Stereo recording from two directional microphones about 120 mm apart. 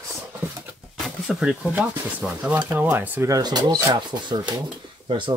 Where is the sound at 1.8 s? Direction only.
10° right (ahead or behind).